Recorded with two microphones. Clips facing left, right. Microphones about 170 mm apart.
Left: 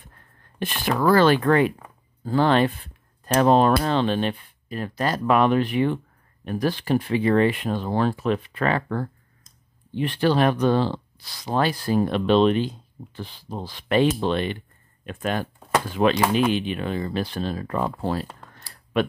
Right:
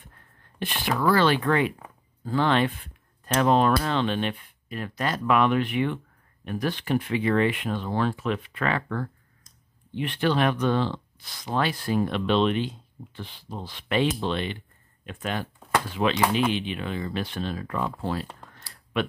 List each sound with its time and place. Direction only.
0.6 s speech: 45° left (ahead or behind)